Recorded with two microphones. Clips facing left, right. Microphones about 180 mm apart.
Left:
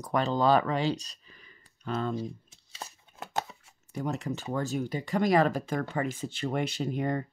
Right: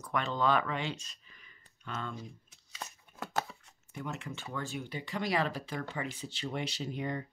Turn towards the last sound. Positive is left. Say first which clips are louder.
# left 6 dB
turn(degrees=50)  # may be behind; listen again after turning